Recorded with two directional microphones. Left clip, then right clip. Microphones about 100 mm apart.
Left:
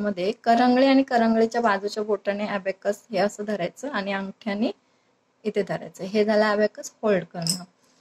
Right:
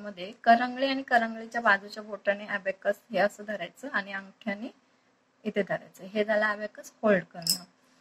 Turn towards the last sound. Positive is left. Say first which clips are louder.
# left 3 dB
turn(degrees=35)  # may be behind; listen again after turning